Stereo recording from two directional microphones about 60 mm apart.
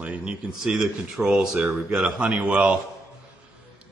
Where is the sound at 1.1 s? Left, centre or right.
Centre.